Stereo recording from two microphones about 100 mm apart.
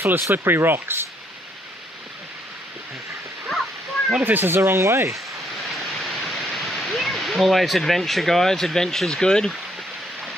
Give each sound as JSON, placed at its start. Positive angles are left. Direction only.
{"t": 0.0, "sound": "speech", "side_deg": -20}
{"t": 4.2, "sound": "speech", "side_deg": -20}
{"t": 5.7, "sound": "waterfall", "side_deg": 0}